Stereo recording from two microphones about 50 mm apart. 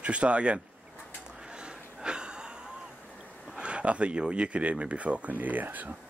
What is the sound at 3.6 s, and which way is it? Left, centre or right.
Speech, right.